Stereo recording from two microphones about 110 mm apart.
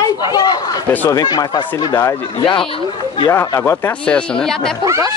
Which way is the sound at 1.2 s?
40° left (ahead or behind).